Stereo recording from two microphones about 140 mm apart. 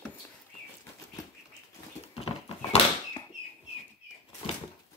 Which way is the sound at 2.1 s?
45° left (ahead or behind).